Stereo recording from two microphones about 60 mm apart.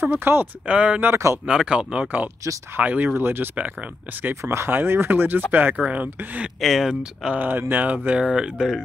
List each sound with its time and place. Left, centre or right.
0.0 s speech: right
0.7 s speech: centre
1.1 s speech: right
1.5 s speech: centre
3.2 s speech: right
6.6 s speech: centre
7.3 s speech: right; by 8.8 s centre